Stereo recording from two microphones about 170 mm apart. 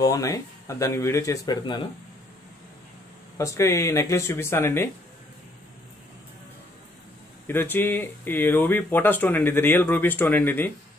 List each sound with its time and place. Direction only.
0.0 s speech: 20° left (ahead or behind)
3.3 s speech: 15° left (ahead or behind)
7.4 s speech: 10° left (ahead or behind)